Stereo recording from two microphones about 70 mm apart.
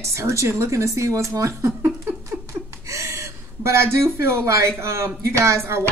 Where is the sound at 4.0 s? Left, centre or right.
Right.